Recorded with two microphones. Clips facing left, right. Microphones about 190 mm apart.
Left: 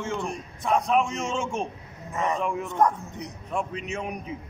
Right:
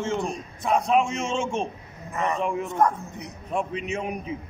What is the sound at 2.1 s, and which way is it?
Speech, centre (ahead or behind).